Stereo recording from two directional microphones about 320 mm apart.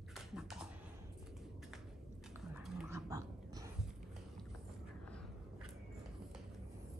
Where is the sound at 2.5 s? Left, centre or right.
Centre.